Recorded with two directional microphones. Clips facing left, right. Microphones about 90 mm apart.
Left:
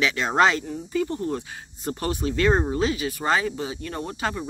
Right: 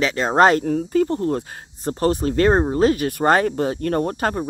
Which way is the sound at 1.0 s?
45° right (ahead or behind).